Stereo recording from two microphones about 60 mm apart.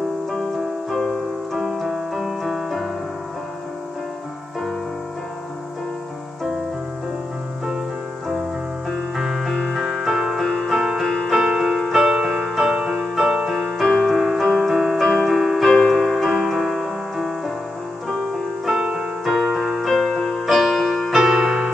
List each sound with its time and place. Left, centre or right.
0.9 s music: centre
1.6 s music: centre
8.9 s music: centre
9.6 s music: centre
9.8 s music: centre
10.5 s music: centre
12.3 s music: centre
12.5 s music: centre
18.7 s keyboard: centre